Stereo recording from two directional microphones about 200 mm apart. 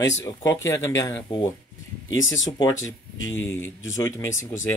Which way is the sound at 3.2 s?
80° left.